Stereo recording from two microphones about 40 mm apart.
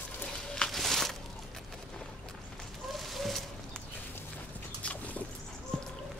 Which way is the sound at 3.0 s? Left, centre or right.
Centre.